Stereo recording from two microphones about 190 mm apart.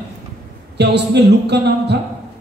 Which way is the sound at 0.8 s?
60° right (ahead or behind).